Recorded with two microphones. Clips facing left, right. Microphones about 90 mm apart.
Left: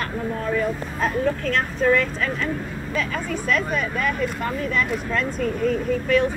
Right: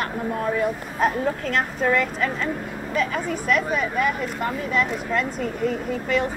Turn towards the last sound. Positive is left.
turn(degrees=-10)  # may be behind; listen again after turning